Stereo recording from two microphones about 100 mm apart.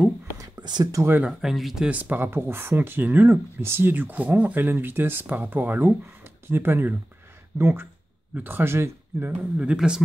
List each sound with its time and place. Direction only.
0.4 s a sound: 45° right (ahead or behind)
1.2 s speech: centre (ahead or behind)
1.9 s speech: 15° right (ahead or behind)
9.6 s speech: 10° right (ahead or behind)